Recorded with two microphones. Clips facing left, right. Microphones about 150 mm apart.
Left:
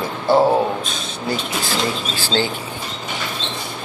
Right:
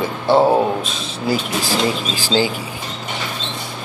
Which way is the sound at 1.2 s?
10° right (ahead or behind).